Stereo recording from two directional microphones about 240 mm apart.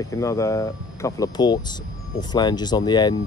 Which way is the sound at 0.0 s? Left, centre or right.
Centre.